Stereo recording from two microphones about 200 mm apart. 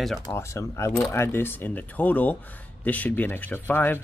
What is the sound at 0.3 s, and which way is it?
Speech, 15° left (ahead or behind).